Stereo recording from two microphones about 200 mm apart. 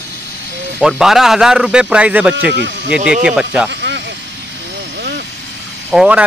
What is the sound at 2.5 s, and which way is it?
Speech, 60° right (ahead or behind).